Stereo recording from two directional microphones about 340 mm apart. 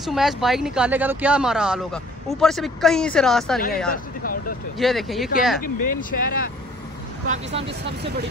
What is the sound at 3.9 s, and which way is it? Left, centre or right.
Vehicle, left.